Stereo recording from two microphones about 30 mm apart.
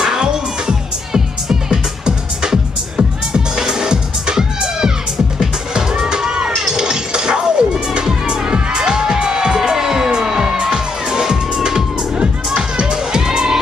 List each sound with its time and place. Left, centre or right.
0.0 s music: right
9.6 s music: centre